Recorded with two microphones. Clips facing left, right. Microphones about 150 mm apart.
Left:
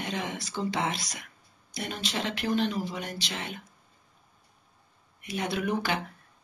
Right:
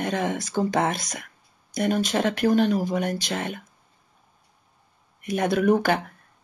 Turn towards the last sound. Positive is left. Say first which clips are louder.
# right 9 dB
turn(degrees=-50)  # may be behind; listen again after turning